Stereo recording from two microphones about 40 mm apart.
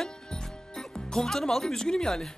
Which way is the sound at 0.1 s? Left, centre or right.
Centre.